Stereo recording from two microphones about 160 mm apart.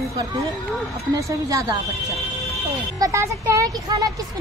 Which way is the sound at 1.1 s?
20° right (ahead or behind).